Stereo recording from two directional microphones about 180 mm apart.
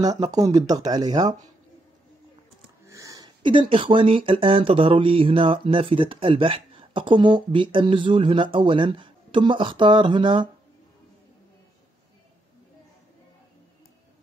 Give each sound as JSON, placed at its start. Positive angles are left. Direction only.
{"t": 0.0, "sound": "speech", "side_deg": -20}
{"t": 2.9, "sound": "speech", "side_deg": -20}